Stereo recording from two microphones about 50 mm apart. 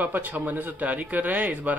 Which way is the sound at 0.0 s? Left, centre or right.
Right.